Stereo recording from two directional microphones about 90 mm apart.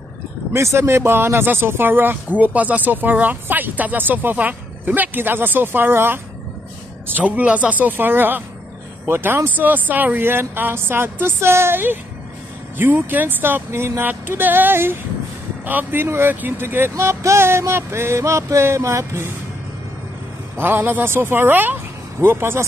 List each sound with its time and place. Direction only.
0.5 s speech: 30° right (ahead or behind)
20.5 s speech: 25° right (ahead or behind)